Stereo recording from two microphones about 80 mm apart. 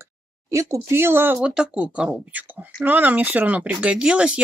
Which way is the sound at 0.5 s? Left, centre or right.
Right.